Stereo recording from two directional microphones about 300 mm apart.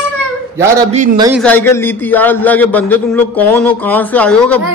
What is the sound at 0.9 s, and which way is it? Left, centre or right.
Speech, centre.